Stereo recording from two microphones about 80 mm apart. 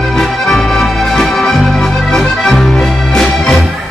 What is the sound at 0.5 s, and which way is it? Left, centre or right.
Music, centre.